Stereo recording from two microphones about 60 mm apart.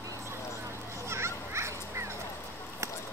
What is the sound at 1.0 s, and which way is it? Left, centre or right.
Fowl, right.